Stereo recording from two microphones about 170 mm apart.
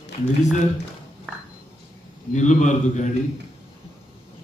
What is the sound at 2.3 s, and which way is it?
Speech, 45° left (ahead or behind).